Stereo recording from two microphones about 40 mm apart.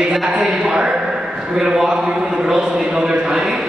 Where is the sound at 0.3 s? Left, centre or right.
Centre.